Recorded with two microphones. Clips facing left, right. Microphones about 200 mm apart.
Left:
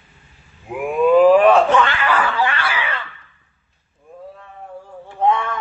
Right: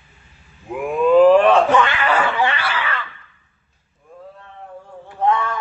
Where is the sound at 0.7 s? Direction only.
10° left (ahead or behind).